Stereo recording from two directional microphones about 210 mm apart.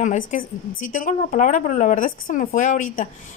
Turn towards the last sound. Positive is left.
turn(degrees=35)  # may be behind; listen again after turning